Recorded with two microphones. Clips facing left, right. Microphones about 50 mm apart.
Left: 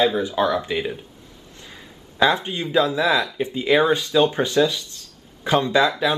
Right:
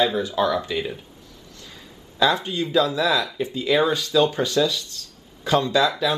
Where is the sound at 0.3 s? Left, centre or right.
Centre.